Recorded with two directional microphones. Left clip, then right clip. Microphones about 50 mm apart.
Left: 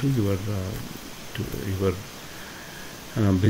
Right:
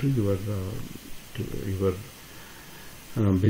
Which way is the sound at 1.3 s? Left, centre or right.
Left.